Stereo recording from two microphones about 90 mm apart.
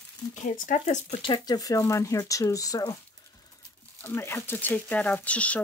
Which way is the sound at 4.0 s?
25° left (ahead or behind).